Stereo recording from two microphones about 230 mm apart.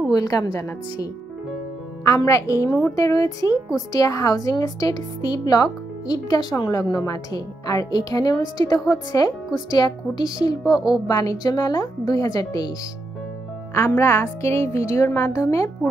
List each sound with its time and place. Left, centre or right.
0.1 s a woman's voice: centre
2.0 s a woman's voice: centre
13.7 s a woman's voice: centre